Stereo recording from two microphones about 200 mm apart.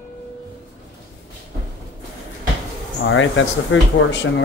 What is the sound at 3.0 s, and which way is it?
Speech, 70° left (ahead or behind).